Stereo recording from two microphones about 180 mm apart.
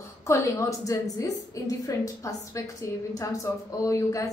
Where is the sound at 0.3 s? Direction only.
20° left (ahead or behind).